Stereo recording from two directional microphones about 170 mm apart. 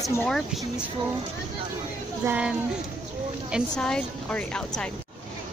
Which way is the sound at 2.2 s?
5° right (ahead or behind).